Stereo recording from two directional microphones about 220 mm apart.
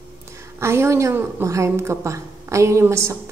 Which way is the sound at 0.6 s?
10° right (ahead or behind).